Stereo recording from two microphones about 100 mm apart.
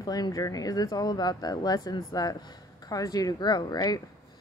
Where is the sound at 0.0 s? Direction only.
40° left (ahead or behind).